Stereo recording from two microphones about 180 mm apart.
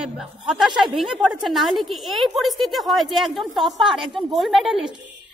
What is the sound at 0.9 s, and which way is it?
A woman's voice, 5° right (ahead or behind).